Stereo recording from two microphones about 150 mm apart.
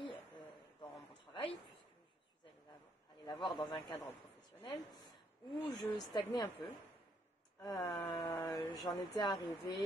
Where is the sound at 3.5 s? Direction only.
30° left (ahead or behind).